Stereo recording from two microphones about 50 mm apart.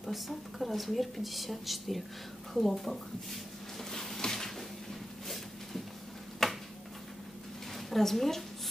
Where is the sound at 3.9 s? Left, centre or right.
Centre.